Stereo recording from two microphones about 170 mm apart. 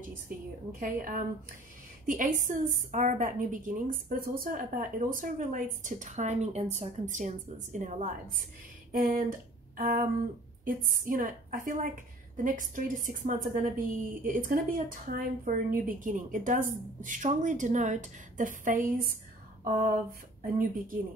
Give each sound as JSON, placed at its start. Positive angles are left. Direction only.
{"t": 0.7, "sound": "a woman's voice", "side_deg": -55}
{"t": 9.8, "sound": "a sound", "side_deg": -55}
{"t": 10.6, "sound": "a woman's voice", "side_deg": -55}